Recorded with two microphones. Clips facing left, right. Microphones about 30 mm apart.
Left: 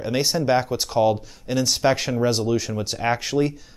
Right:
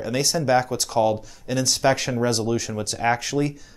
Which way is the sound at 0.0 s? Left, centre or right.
Centre.